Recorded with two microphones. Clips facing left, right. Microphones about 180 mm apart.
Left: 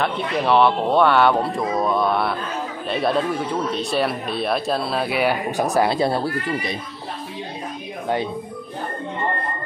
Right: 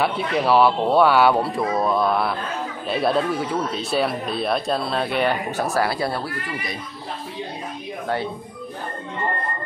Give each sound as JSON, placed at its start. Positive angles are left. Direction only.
{"t": 0.0, "sound": "speech", "side_deg": -5}
{"t": 5.7, "sound": "speech", "side_deg": 20}